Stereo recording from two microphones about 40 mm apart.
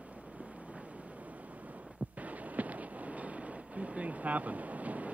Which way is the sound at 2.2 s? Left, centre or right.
Right.